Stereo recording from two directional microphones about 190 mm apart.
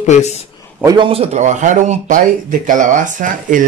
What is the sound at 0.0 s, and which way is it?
Speech, 35° left (ahead or behind).